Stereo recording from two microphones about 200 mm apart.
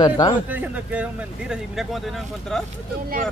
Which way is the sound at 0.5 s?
10° right (ahead or behind).